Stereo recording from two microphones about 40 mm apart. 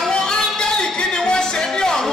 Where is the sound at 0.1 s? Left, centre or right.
Left.